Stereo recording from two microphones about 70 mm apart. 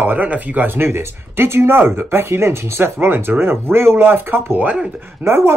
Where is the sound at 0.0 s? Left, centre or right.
Right.